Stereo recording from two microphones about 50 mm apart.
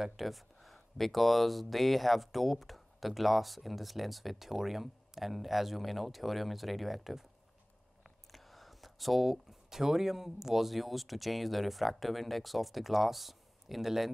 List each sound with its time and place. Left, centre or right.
0.0 s speech: centre